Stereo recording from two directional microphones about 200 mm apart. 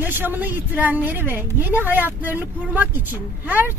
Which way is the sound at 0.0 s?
10° right (ahead or behind).